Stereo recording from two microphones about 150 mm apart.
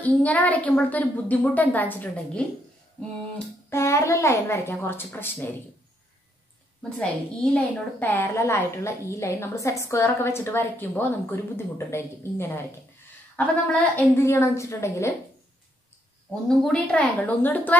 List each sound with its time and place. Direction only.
0.0 s a woman's voice: 10° left (ahead or behind)
3.7 s a woman's voice: 20° left (ahead or behind)
6.8 s a woman's voice: 5° left (ahead or behind)
16.4 s a woman's voice: 5° left (ahead or behind)